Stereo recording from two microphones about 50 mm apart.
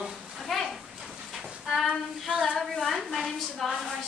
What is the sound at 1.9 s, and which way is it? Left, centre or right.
Female singing, right.